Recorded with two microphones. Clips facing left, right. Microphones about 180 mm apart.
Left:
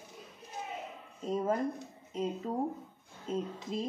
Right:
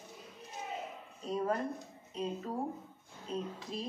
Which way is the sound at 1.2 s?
20° left (ahead or behind).